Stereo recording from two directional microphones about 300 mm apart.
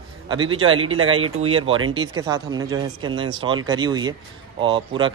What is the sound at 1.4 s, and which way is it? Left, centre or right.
Speech, right.